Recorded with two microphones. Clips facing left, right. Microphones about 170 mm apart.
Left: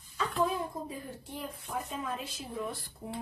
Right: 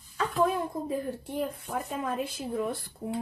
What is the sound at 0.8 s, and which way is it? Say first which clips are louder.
A woman's voice: right 10 dB; 55° right (ahead or behind).